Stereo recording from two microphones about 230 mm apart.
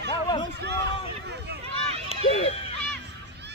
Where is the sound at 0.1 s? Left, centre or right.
Centre.